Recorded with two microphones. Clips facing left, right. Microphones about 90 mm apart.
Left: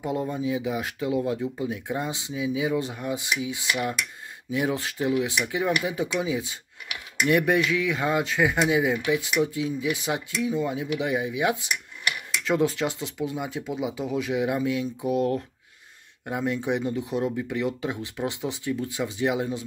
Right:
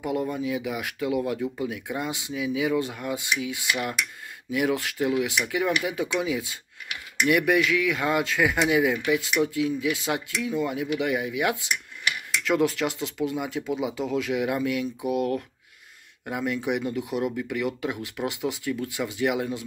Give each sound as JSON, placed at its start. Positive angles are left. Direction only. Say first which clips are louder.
{"t": 0.0, "sound": "speech", "louder": "even", "side_deg": 25}